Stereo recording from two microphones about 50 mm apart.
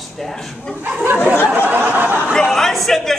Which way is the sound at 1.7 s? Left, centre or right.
Right.